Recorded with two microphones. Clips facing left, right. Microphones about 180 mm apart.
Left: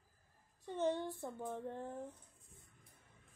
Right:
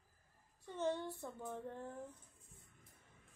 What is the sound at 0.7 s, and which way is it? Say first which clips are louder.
A woman's voice: left 3 dB; 15° left (ahead or behind).